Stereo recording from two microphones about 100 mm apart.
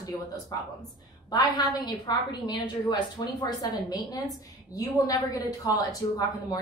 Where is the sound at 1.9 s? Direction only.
45° left (ahead or behind).